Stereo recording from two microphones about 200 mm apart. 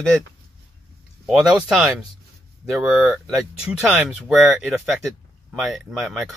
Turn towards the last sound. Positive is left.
turn(degrees=0)  # may be behind; listen again after turning